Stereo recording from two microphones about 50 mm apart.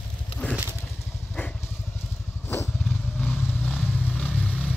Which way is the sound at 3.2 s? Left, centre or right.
Left.